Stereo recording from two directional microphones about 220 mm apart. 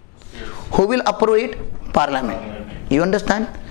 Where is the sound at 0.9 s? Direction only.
15° left (ahead or behind).